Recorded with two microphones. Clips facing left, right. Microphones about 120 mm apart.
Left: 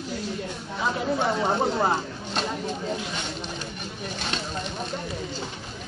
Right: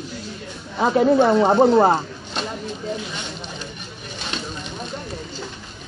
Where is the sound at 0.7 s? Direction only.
55° right (ahead or behind).